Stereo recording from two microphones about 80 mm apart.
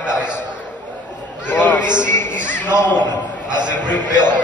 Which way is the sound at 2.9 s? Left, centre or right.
Right.